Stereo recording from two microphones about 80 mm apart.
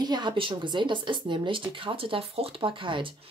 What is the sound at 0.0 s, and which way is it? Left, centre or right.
Speech, right.